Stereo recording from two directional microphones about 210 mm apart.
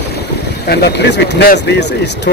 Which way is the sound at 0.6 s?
50° left (ahead or behind).